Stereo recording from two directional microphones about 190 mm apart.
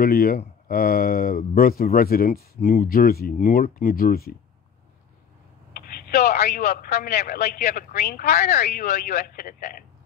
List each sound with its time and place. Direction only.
0.0 s speech: 50° left (ahead or behind)
5.8 s speech: 60° left (ahead or behind); by 8.6 s 40° left (ahead or behind)
8.6 s speech: 50° left (ahead or behind)